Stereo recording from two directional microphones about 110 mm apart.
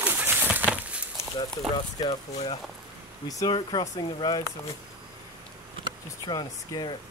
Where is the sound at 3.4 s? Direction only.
45° left (ahead or behind).